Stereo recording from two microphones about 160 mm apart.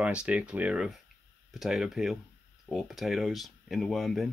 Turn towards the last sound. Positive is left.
turn(degrees=0)  # may be behind; listen again after turning